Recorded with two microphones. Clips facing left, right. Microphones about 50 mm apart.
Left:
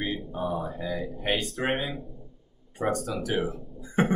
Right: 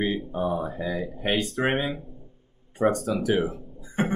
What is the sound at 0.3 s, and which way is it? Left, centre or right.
Speech, centre.